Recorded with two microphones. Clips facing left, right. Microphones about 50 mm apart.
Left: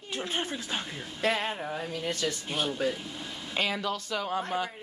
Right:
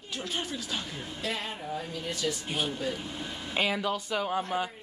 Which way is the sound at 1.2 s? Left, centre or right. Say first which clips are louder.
Left 7 dB; left.